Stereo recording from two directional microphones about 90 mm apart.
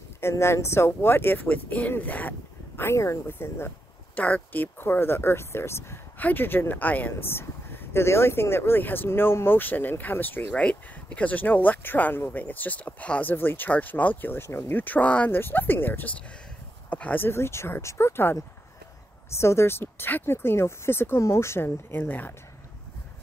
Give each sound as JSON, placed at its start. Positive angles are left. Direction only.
{"t": 0.2, "sound": "speech", "side_deg": 30}